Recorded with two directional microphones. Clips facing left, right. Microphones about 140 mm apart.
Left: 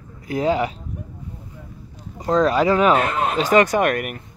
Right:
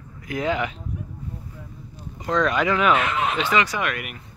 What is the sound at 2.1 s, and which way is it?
Speech, 35° left (ahead or behind).